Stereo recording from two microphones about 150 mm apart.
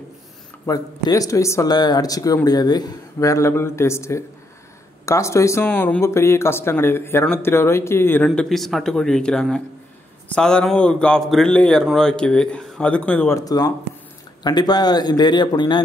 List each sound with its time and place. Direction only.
0.7 s speech: 25° left (ahead or behind)
8.3 s a man's voice: centre (ahead or behind)
13.4 s speech: 25° left (ahead or behind)